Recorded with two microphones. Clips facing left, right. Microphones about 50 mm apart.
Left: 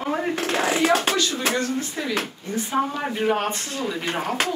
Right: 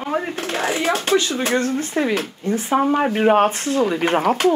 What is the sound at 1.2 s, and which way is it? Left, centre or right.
Speech, right.